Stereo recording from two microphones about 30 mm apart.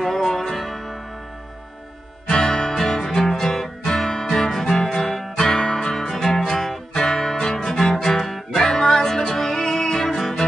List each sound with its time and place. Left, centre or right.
0.0 s music: centre
2.2 s guitar: left
2.7 s music: centre
6.2 s music: centre
6.9 s guitar: centre
8.5 s music: centre